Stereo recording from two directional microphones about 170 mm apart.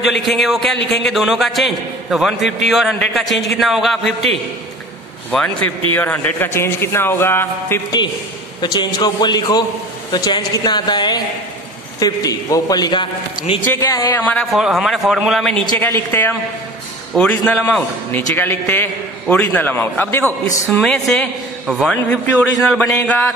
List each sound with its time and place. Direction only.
0.2 s a man's voice: centre (ahead or behind)
5.3 s a man's voice: 5° left (ahead or behind)
8.5 s a man's voice: 25° left (ahead or behind)
14.2 s a man's voice: 5° left (ahead or behind)
15.8 s a man's voice: 15° left (ahead or behind)